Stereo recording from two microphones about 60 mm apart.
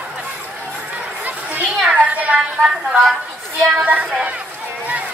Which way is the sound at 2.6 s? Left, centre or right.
Centre.